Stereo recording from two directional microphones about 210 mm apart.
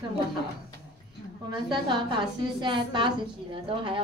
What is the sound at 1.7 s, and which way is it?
A woman's voice, 20° right (ahead or behind).